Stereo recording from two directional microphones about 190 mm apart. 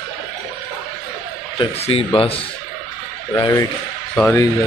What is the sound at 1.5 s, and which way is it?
Speech, 30° left (ahead or behind).